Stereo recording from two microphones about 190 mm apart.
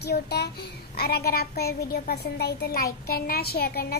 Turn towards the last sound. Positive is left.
turn(degrees=55)  # may be behind; listen again after turning